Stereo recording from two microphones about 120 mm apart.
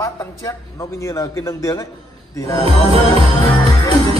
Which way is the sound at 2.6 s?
55° right (ahead or behind).